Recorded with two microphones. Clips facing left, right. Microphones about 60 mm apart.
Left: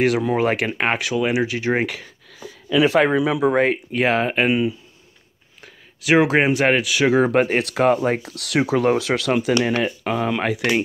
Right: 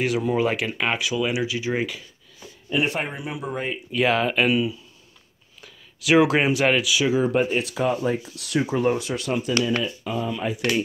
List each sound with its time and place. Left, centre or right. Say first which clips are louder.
0.0 s speech: left 4 dB; left
3.9 s speech: left 2 dB; left
9.7 s speech: left 4 dB; left